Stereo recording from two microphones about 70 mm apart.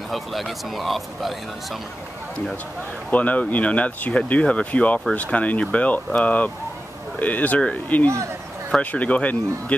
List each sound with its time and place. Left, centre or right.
0.1 s speech: centre
3.1 s speech: left